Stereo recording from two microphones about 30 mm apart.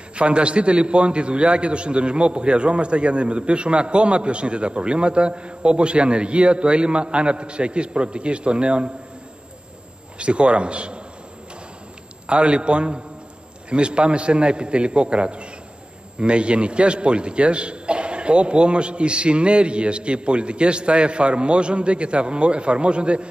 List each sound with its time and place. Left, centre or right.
0.1 s a man's voice: right
10.1 s a man's voice: right
12.3 s a man's voice: right